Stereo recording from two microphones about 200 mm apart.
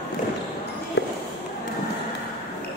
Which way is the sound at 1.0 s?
60° left (ahead or behind).